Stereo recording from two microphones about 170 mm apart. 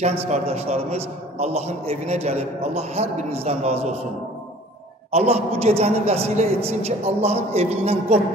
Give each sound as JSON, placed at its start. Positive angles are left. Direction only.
{"t": 0.0, "sound": "a man's voice", "side_deg": -40}
{"t": 5.1, "sound": "a man's voice", "side_deg": -40}